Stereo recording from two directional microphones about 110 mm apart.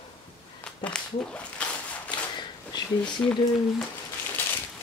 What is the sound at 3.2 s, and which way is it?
Speech, 20° left (ahead or behind).